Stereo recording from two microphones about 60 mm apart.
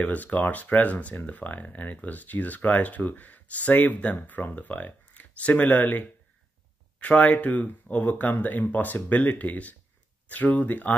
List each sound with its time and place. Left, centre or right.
0.0 s speech: left